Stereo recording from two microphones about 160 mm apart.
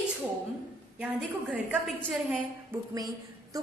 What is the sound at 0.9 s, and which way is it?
A woman's voice, 10° right (ahead or behind).